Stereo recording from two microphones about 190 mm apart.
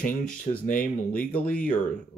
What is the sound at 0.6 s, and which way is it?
Speech, 45° left (ahead or behind).